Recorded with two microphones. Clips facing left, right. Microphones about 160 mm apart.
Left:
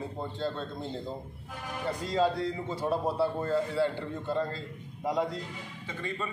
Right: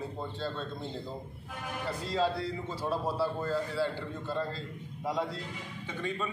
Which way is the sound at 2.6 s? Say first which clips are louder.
Left 3 dB; 20° left (ahead or behind).